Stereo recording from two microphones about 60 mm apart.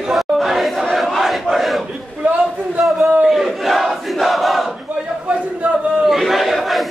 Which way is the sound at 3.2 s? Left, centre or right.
Centre.